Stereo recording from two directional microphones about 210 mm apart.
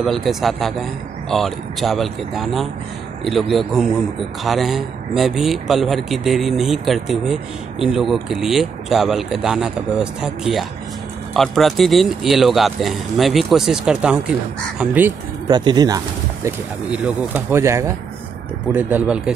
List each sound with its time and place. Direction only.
0.0 s speech: centre (ahead or behind)
15.4 s speech: 20° right (ahead or behind)
16.4 s speech: 5° right (ahead or behind)